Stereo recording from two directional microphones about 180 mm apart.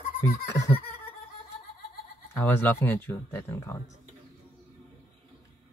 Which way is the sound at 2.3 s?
10° left (ahead or behind).